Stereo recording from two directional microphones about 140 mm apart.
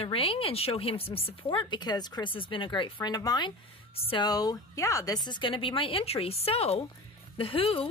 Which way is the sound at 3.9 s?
45° left (ahead or behind).